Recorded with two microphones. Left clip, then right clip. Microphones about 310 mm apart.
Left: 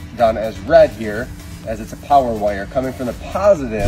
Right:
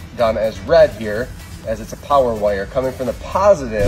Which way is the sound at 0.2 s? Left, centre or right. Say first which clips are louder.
Left 1 dB; centre.